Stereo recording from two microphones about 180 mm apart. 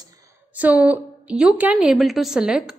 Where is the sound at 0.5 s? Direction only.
10° right (ahead or behind).